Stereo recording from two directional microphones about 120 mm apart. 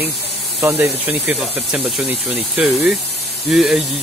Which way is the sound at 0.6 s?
20° right (ahead or behind).